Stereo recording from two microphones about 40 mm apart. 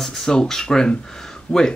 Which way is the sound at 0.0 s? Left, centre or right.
Centre.